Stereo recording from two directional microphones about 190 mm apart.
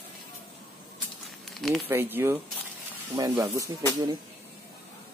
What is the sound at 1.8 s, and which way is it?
Speech, 10° right (ahead or behind).